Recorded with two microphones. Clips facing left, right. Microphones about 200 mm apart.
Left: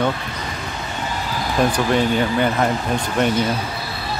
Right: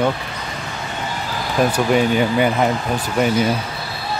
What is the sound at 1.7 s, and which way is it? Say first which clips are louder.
Speech: right 2 dB; 10° right (ahead or behind).